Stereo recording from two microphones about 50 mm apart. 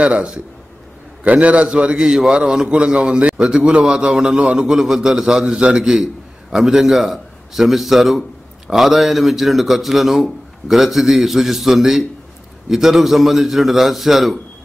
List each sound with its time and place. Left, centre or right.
0.0 s a man's voice: right; by 14.4 s centre